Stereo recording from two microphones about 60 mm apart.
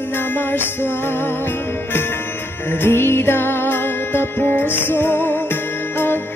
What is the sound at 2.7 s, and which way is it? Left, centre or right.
Music, left.